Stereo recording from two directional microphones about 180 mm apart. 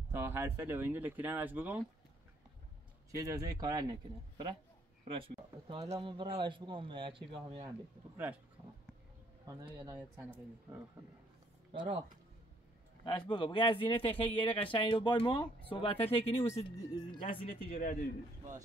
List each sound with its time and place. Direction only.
0.1 s speech: 15° right (ahead or behind)
3.1 s speech: 20° right (ahead or behind)
9.5 s speech: 15° right (ahead or behind)
11.7 s speech: 25° right (ahead or behind)
13.0 s speech: 25° left (ahead or behind)
17.2 s speech: 50° left (ahead or behind)